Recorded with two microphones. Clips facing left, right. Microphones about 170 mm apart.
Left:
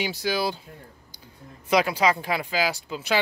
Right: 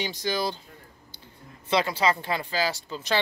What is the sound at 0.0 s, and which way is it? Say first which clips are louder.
Speech: left 2 dB; 10° left (ahead or behind).